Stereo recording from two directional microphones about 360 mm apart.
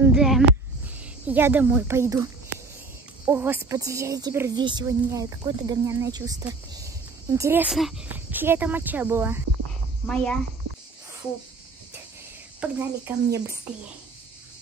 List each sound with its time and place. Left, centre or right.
0.0 s snake: centre
1.2 s speech: centre
3.3 s speech: centre
12.5 s speech: centre